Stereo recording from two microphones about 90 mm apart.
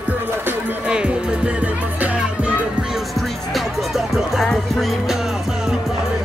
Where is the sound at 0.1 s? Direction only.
20° right (ahead or behind).